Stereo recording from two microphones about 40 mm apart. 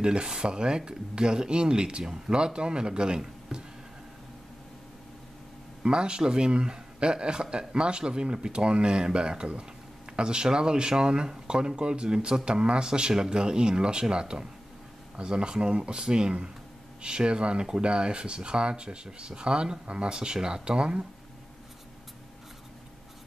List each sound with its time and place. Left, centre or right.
0.0 s speech: right
3.5 s a sound: right
5.8 s speech: right